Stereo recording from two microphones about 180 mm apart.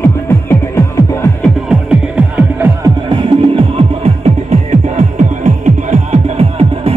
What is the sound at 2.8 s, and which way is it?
Music, 25° right (ahead or behind).